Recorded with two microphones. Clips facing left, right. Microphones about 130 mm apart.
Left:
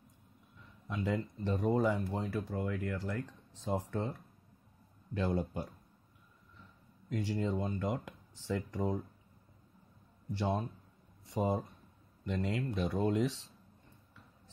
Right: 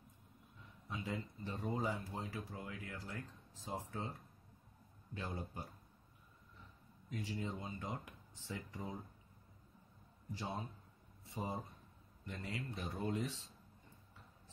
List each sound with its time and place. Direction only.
0.8 s speech: 85° left
7.1 s speech: 85° left
10.3 s speech: 80° left